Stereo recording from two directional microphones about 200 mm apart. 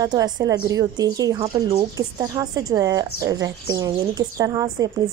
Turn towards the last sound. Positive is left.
turn(degrees=-15)  # may be behind; listen again after turning